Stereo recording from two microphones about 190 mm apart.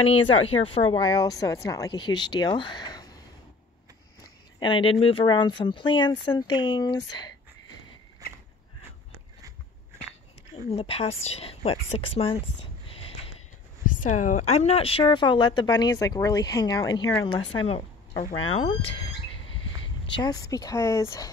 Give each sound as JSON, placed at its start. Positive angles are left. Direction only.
{"t": 0.1, "sound": "a woman's voice", "side_deg": 30}
{"t": 4.6, "sound": "a woman's voice", "side_deg": 25}
{"t": 10.7, "sound": "speech", "side_deg": 30}
{"t": 13.9, "sound": "a woman's voice", "side_deg": 40}
{"t": 17.6, "sound": "a sound", "side_deg": 30}
{"t": 18.5, "sound": "a woman's voice", "side_deg": 30}
{"t": 20.1, "sound": "speech", "side_deg": 20}